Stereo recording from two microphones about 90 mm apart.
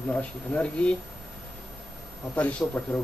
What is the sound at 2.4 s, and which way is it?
Speech, 15° left (ahead or behind).